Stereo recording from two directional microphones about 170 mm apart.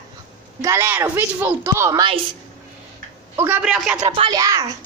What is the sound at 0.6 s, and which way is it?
Speech, 15° right (ahead or behind).